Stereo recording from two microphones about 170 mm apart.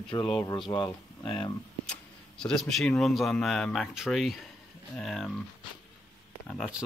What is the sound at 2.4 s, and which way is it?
Speech, 5° left (ahead or behind).